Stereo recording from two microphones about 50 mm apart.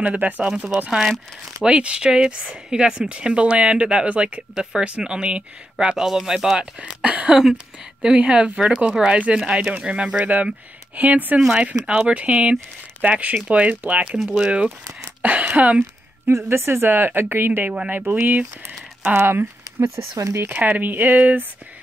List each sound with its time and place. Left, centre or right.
0.0 s speech: right
0.8 s speech: centre
1.6 s speech: right
7.3 s speech: centre
10.2 s speech: right
11.3 s speech: centre; by 14.1 s right
14.1 s speech: centre
14.4 s speech: right
16.3 s speech: right
16.9 s speech: right
17.6 s speech: right
19.0 s speech: right
19.8 s speech: right
20.4 s speech: right